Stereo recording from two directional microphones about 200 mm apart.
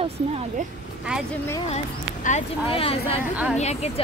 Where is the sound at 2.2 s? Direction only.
30° left (ahead or behind).